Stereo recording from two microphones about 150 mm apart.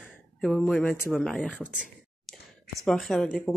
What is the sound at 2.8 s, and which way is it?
Speech, centre (ahead or behind).